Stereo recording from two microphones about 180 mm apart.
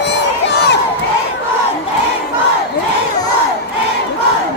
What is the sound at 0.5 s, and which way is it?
Crowd, 70° left (ahead or behind).